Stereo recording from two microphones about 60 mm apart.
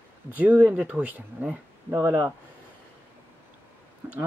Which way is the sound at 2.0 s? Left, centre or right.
Right.